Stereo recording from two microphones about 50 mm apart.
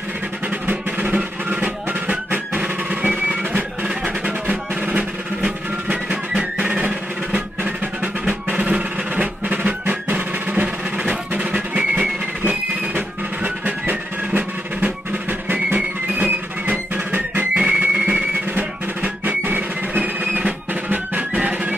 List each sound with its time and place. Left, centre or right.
0.7 s music: right
17.6 s music: right
19.2 s drum: right
20.0 s music: right
20.9 s music: right